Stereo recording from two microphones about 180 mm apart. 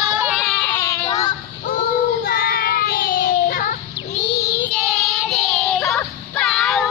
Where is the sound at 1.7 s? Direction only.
50° left (ahead or behind).